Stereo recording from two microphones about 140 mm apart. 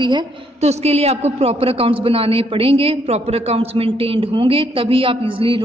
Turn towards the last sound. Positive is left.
turn(degrees=-40)  # may be behind; listen again after turning